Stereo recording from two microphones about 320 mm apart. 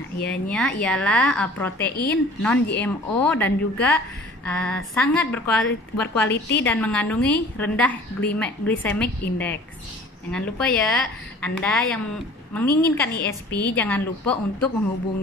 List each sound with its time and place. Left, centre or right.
0.3 s a woman's voice: centre
13.1 s a woman's voice: left
13.7 s a woman's voice: centre